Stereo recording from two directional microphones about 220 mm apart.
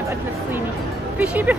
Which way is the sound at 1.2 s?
5° right (ahead or behind).